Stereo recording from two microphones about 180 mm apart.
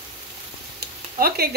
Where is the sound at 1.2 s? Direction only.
60° right (ahead or behind).